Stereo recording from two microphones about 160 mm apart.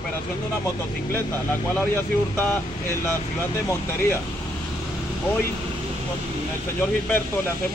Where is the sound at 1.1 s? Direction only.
15° left (ahead or behind).